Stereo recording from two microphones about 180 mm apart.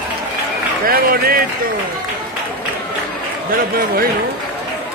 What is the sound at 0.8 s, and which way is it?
Speech, 55° right (ahead or behind).